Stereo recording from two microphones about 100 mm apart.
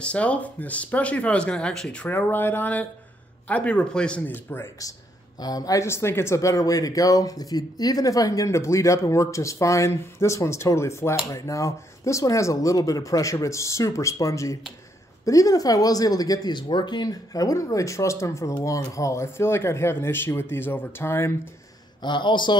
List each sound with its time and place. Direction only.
0.0 s speech: 10° left (ahead or behind)
4.3 s speech: 20° left (ahead or behind)
5.4 s speech: 40° left (ahead or behind)
22.0 s speech: 50° left (ahead or behind)